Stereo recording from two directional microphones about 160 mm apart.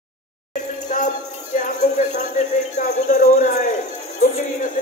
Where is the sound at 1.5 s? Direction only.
50° left (ahead or behind).